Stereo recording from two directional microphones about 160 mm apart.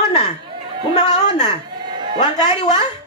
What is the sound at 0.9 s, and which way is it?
Speech, 45° left (ahead or behind).